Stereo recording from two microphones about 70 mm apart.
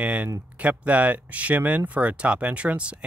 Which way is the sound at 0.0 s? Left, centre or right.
Centre.